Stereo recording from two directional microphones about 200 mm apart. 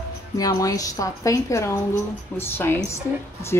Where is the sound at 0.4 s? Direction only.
15° left (ahead or behind).